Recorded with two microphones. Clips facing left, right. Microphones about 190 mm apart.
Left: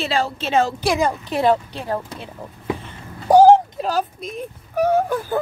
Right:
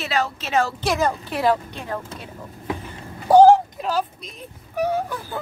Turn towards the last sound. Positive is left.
turn(degrees=50)  # may be behind; listen again after turning